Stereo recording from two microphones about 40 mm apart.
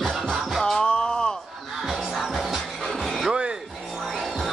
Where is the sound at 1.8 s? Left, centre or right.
Centre.